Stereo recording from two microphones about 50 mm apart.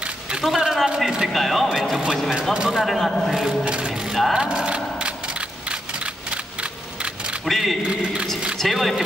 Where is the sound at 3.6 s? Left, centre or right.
Centre.